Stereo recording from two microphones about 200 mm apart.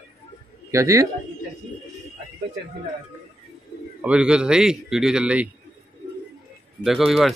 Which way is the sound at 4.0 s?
5° right (ahead or behind).